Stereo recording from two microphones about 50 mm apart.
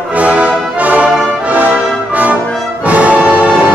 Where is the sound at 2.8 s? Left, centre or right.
Right.